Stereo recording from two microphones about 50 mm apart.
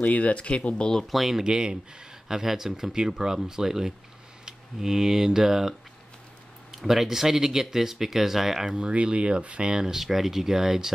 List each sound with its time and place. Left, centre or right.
0.0 s speech: left
1.0 s speech: centre
1.4 s speech: centre
8.7 s speech: right
9.7 s speech: centre